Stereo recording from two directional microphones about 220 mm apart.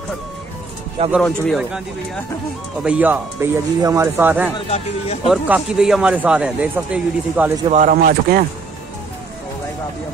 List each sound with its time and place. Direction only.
1.1 s speech: centre (ahead or behind)
2.8 s speech: 5° right (ahead or behind)
4.6 s speech: 30° left (ahead or behind)
5.3 s speech: centre (ahead or behind)
7.7 s speech: 35° right (ahead or behind)